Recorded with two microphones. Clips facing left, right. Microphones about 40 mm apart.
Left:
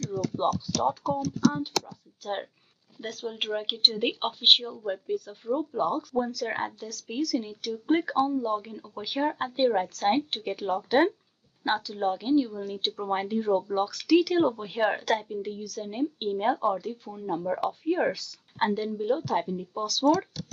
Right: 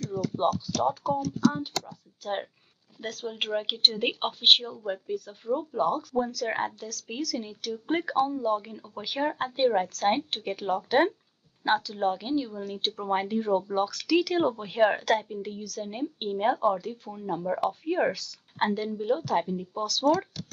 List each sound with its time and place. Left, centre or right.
0.5 s speech: centre
3.0 s speech: centre
13.8 s speech: centre
14.1 s speech: centre